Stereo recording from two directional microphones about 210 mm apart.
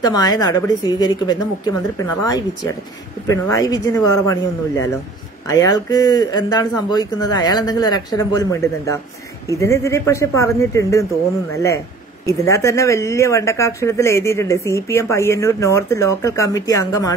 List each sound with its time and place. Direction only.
0.0 s speech: 20° left (ahead or behind)